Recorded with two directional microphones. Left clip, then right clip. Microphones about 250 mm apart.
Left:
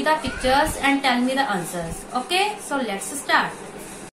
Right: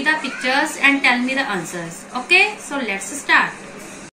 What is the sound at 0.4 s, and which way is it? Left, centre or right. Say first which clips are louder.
Speech: right 2 dB; centre.